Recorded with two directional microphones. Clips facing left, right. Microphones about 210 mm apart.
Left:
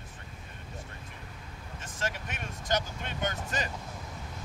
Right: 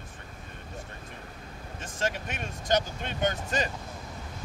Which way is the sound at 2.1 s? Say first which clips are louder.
Right 4 dB; 25° right (ahead or behind).